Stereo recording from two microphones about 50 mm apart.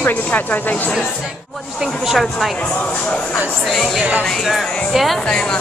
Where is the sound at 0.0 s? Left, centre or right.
Left.